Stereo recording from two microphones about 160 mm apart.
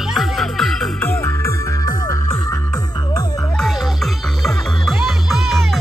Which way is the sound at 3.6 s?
Centre (ahead or behind).